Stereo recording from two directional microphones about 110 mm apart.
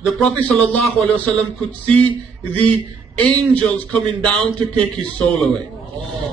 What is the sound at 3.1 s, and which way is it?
A man's voice, 15° left (ahead or behind).